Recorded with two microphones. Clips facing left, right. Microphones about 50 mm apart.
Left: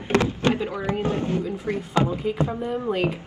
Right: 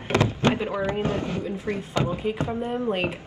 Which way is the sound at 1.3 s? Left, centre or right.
Right.